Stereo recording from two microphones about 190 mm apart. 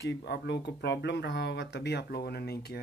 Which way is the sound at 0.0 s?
60° left (ahead or behind).